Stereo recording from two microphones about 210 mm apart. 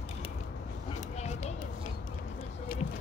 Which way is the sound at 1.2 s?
30° left (ahead or behind).